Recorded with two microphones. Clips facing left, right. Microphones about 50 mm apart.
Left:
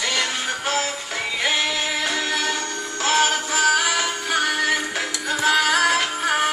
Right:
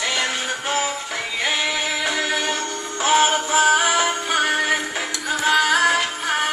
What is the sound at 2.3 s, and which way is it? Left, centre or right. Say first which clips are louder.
Music: right 1 dB; centre.